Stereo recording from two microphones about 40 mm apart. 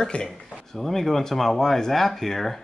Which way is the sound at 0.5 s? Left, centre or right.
Centre.